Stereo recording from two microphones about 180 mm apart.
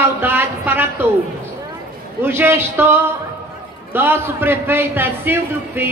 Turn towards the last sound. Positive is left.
turn(degrees=-10)  # may be behind; listen again after turning